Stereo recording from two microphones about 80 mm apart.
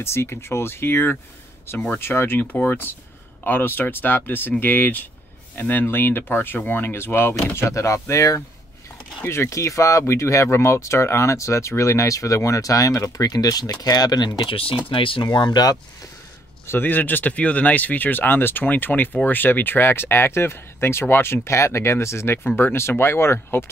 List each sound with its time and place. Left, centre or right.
0.0 s speech: left
14.9 s speech: left
16.6 s speech: left